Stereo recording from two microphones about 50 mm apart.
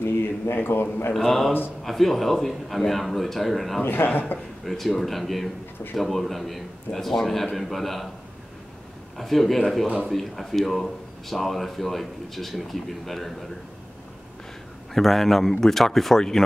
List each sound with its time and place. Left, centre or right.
0.0 s a man's voice: left
1.1 s speech: centre
3.8 s a man's voice: left
4.6 s speech: centre
9.1 s speech: centre
15.0 s speech: centre